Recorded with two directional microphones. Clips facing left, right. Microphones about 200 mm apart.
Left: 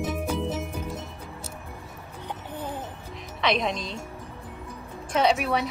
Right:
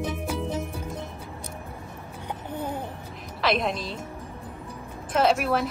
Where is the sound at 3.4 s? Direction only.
Centre (ahead or behind).